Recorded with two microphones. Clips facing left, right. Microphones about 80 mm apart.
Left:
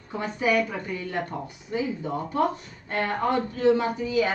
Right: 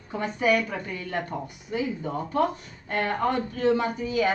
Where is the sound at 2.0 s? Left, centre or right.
Centre.